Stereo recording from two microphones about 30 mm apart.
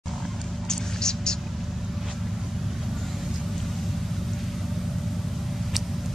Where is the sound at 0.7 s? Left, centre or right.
Left.